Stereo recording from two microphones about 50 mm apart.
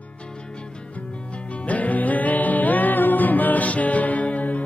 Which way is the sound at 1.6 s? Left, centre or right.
Left.